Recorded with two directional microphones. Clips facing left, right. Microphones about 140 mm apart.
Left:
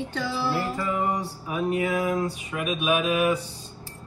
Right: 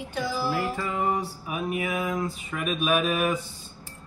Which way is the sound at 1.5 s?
35° left (ahead or behind).